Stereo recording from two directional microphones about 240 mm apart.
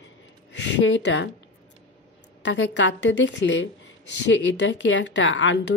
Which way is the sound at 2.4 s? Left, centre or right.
Left.